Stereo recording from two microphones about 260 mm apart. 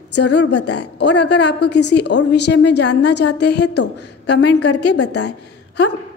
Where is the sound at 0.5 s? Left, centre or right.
Left.